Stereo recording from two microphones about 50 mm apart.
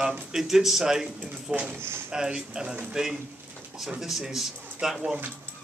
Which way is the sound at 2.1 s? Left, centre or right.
Centre.